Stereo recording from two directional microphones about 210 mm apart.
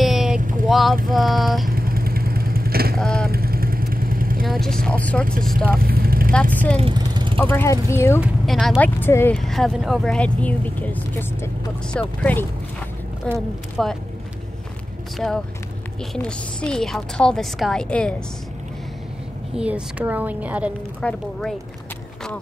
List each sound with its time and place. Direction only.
0.0 s vehicle: centre (ahead or behind)
0.4 s vehicle: 40° right (ahead or behind)
0.7 s vehicle: centre (ahead or behind)
1.1 s a woman's voice: centre (ahead or behind)
1.7 s vehicle: 45° right (ahead or behind)
3.0 s vehicle: 5° left (ahead or behind)
3.3 s vehicle: 45° right (ahead or behind)
4.5 s speech: centre (ahead or behind)
5.8 s vehicle: 45° right (ahead or behind)
6.8 s vehicle: 20° right (ahead or behind)
7.3 s speech: 10° left (ahead or behind)
8.2 s a woman's voice: centre (ahead or behind)
15.1 s a woman's voice: centre (ahead or behind)
19.5 s a woman's voice: 5° right (ahead or behind)